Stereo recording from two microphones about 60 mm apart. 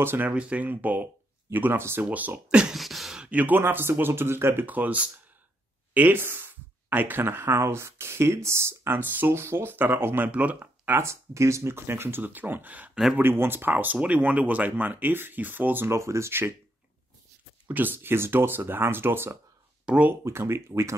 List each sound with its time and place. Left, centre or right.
0.0 s speech: right
0.3 s speech: right
2.0 s speech: right
2.4 s speech: centre
2.7 s a sound: centre
3.2 s speech: right
3.5 s speech: right
4.6 s speech: right
11.0 s speech: right
13.2 s speech: right
15.9 s speech: right
17.6 s speech: right
19.9 s speech: centre
20.2 s speech: right